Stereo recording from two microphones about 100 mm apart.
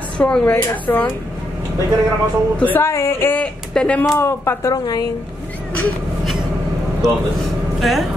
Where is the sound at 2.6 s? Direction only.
20° left (ahead or behind).